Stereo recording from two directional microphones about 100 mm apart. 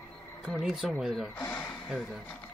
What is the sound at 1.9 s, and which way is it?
Speech, 10° right (ahead or behind).